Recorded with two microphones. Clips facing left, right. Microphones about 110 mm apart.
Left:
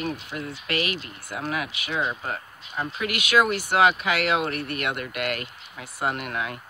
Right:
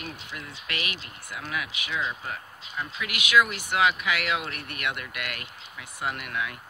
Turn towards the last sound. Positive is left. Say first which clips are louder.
# left 3 dB
turn(degrees=35)  # may be behind; listen again after turning